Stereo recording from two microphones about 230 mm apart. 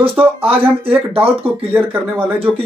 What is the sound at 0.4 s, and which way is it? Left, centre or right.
Speech, right.